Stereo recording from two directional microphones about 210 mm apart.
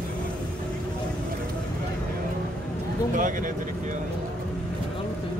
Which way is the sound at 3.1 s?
40° right (ahead or behind).